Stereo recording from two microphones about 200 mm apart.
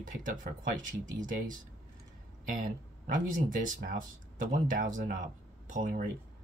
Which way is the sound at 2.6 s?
40° right (ahead or behind).